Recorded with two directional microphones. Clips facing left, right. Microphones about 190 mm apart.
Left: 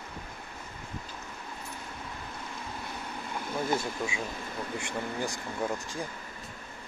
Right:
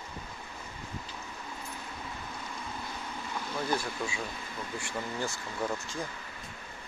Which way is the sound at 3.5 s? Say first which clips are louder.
Left 2 dB; 20° left (ahead or behind).